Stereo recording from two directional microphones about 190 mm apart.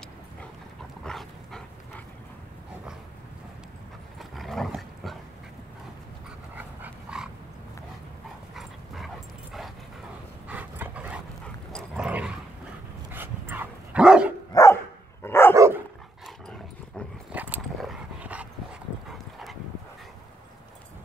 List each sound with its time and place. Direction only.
1.0 s dog: centre (ahead or behind)
4.2 s dog: centre (ahead or behind)
6.5 s dog: 5° right (ahead or behind)
8.5 s dog: centre (ahead or behind)
14.5 s dog: 15° left (ahead or behind)
15.5 s dog: 15° right (ahead or behind)
16.3 s dog: 5° left (ahead or behind)
17.3 s dog: 10° right (ahead or behind)